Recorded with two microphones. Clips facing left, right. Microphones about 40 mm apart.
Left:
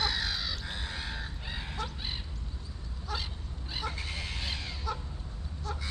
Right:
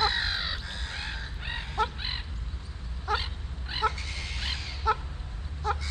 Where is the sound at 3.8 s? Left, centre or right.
Right.